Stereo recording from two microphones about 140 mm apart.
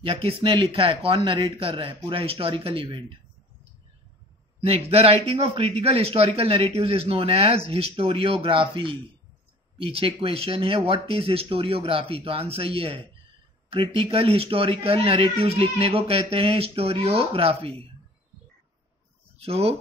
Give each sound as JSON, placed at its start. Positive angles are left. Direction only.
{"t": 0.0, "sound": "speech", "side_deg": -40}
{"t": 4.6, "sound": "speech", "side_deg": -45}
{"t": 19.3, "sound": "speech", "side_deg": -45}